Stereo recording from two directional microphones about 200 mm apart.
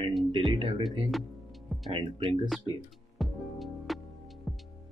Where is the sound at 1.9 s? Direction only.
25° right (ahead or behind).